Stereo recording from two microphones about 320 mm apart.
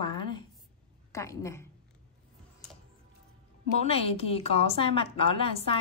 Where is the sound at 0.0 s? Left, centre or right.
Centre.